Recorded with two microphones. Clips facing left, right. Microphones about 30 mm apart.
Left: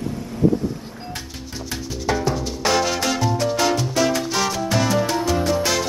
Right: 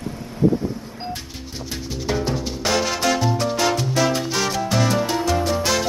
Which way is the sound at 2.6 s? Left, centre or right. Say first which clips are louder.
Left 1 dB; centre.